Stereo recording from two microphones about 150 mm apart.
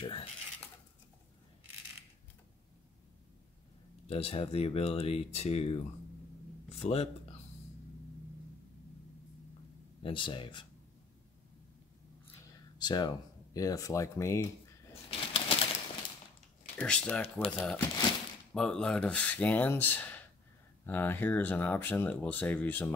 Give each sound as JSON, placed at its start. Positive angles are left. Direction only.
{"t": 0.0, "sound": "speech", "side_deg": 40}
{"t": 4.1, "sound": "speech", "side_deg": 40}
{"t": 10.0, "sound": "speech", "side_deg": 35}
{"t": 12.7, "sound": "speech", "side_deg": 30}
{"t": 15.0, "sound": "a sound", "side_deg": 40}
{"t": 16.7, "sound": "speech", "side_deg": 5}